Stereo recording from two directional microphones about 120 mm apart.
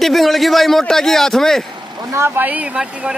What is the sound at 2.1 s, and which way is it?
Speech, 15° right (ahead or behind).